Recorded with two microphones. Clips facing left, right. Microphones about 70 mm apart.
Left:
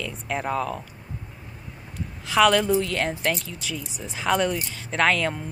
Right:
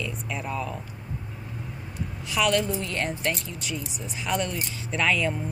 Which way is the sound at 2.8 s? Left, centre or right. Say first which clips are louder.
Left 3 dB; left.